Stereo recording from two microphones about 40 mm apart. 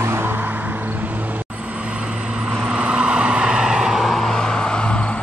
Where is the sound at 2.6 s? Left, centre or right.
Right.